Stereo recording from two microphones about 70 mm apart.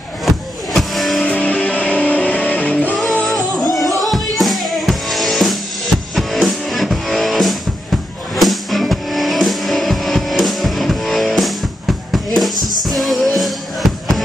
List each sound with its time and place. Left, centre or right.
0.7 s music: centre
1.2 s music: centre
3.3 s music: centre
12.6 s music: centre